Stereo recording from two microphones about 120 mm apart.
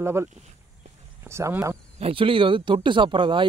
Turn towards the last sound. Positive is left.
turn(degrees=-40)  # may be behind; listen again after turning